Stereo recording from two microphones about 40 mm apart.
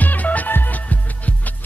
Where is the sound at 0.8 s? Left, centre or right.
Left.